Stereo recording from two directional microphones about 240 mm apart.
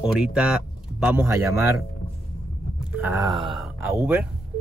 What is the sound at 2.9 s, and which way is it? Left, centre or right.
Speech, centre.